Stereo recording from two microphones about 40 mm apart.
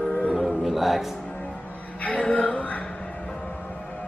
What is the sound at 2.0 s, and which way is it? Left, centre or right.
Music, left.